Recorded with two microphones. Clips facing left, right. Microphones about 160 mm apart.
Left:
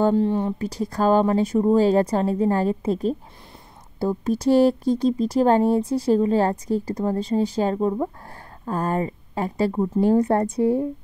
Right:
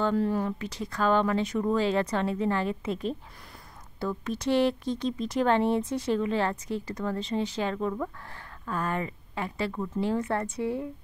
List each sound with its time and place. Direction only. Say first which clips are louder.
0.1 s speech: left 6 dB; 25° left (ahead or behind)